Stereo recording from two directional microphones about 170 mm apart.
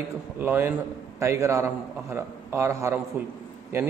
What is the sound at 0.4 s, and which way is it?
A man's voice, 10° right (ahead or behind).